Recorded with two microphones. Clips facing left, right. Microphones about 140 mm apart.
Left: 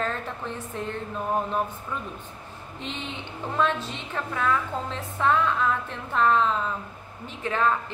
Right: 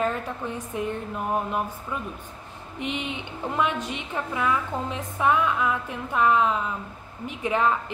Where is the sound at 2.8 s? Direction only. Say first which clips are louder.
Right 5 dB; 15° right (ahead or behind).